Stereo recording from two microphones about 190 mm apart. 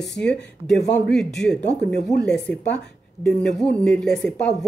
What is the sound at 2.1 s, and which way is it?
A woman's voice, 15° left (ahead or behind).